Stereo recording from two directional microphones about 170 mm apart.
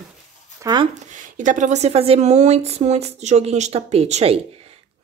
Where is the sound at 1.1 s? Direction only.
50° right (ahead or behind).